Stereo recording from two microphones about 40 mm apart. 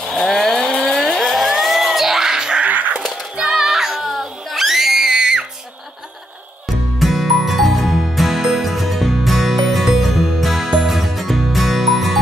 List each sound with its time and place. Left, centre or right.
0.1 s vehicle: centre
0.9 s music: centre
2.6 s a sound: right
3.3 s music: centre
7.0 s music: centre